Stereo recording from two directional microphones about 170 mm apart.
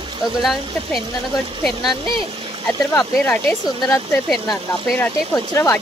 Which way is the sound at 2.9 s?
20° left (ahead or behind).